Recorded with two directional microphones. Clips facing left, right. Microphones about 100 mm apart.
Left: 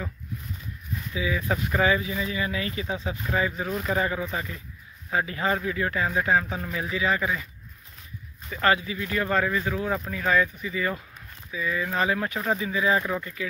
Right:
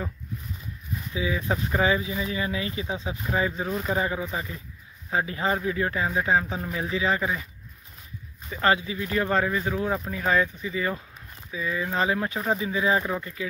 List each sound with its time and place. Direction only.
1.1 s speech: 25° right (ahead or behind)
8.5 s speech: 25° right (ahead or behind)